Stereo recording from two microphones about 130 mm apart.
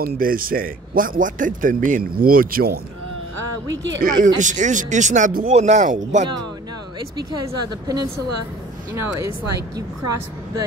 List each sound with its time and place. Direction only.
0.2 s speech: 90° right
4.0 s speech: 90° right
4.4 s speech: 70° right (ahead or behind)
7.2 s a woman's voice: 30° right (ahead or behind)